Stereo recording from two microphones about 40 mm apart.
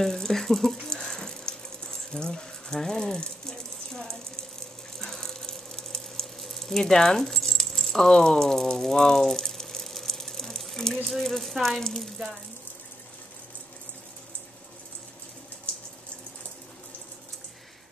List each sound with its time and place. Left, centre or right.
0.0 s water: centre
2.1 s a sound: centre
6.4 s keys jangling: centre
8.6 s water: centre
10.6 s a sound: centre
11.1 s speech: centre